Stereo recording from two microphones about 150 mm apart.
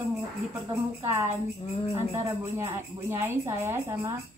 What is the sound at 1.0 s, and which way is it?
Speech, 15° right (ahead or behind).